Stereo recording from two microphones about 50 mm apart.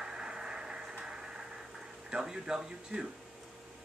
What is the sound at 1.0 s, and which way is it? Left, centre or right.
Vehicle, centre.